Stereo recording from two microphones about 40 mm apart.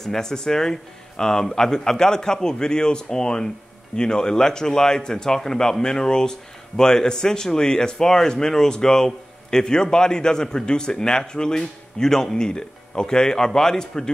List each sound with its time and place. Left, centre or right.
0.0 s speech: centre